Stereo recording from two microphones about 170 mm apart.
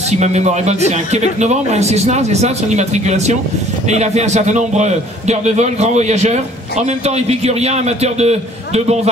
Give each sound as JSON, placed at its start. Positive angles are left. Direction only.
{"t": 0.1, "sound": "a man's voice", "side_deg": -40}